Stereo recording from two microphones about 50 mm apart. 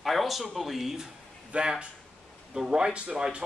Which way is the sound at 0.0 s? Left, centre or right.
Centre.